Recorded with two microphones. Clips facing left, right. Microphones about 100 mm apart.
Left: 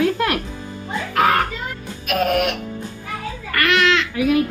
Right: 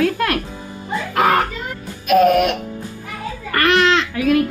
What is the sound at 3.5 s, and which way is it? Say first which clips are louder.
Speech: right 3 dB; 35° right (ahead or behind).